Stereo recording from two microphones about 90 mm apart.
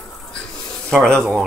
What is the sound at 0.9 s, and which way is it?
Speech, 5° left (ahead or behind).